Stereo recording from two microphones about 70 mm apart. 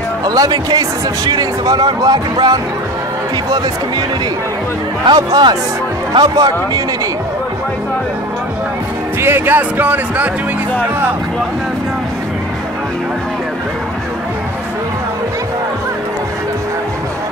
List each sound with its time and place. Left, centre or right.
0.2 s speech: right
5.0 s speech: right
9.2 s speech: right
9.6 s speech: right